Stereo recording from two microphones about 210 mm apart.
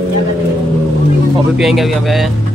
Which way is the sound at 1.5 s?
Centre (ahead or behind).